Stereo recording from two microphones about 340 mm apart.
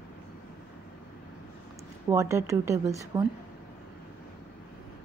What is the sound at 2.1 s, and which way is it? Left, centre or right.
Speech, centre.